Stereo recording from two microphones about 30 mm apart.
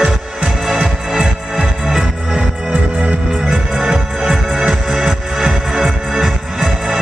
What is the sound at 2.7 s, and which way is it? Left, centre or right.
Music, right.